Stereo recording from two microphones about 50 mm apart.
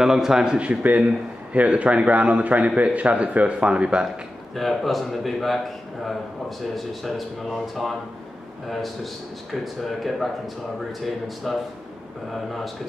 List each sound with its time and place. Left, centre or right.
0.0 s a man's voice: centre
0.6 s a man's voice: right
4.6 s a man's voice: centre
6.9 s a man's voice: centre